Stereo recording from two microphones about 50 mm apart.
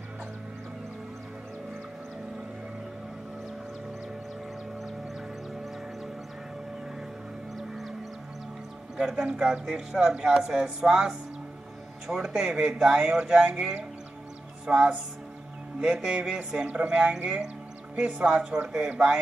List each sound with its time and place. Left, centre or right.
7.5 s music: centre
9.1 s speech: centre
12.4 s speech: centre
14.7 s speech: centre